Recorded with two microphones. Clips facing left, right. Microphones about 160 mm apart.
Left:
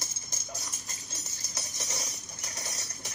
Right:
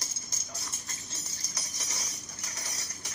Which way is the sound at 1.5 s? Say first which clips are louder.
Left 4 dB; 25° left (ahead or behind).